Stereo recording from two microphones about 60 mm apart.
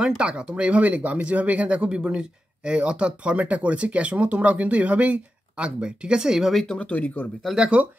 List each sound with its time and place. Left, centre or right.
0.2 s speech: centre
6.5 s speech: centre
6.8 s speech: left
7.8 s speech: right